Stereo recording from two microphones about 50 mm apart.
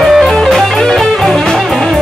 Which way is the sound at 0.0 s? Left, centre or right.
Centre.